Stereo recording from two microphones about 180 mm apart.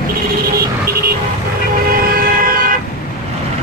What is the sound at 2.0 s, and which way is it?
Train, 50° right (ahead or behind).